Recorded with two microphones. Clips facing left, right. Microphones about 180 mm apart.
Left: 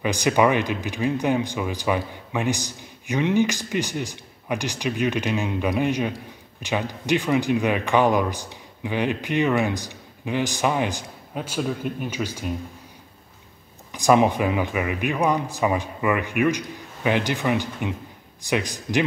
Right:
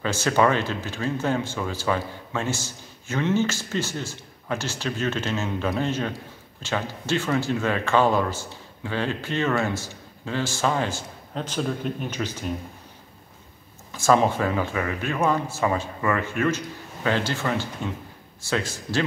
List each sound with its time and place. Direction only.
0.0 s speech: 15° left (ahead or behind)
13.9 s speech: 15° left (ahead or behind)